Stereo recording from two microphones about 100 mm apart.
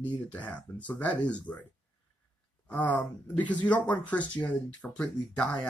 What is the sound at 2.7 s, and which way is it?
Speech, 15° left (ahead or behind).